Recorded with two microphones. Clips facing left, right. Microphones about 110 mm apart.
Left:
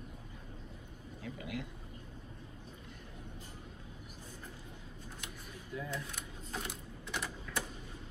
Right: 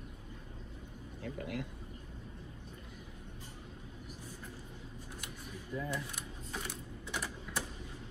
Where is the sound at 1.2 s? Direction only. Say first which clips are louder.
Right 2 dB; centre (ahead or behind).